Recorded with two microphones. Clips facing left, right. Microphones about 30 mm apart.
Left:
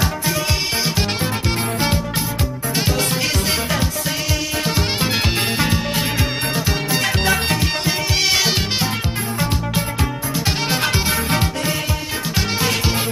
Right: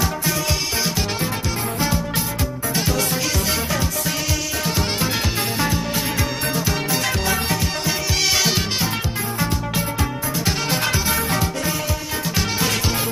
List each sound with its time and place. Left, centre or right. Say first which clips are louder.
2.7 s music: left 2 dB; left
5.0 s music: left 3 dB; left
7.2 s music: left 3 dB; left
7.8 s music: left 2 dB; centre
10.4 s music: left 2 dB; left
11.2 s music: left 2 dB; left
12.4 s music: left 2 dB; centre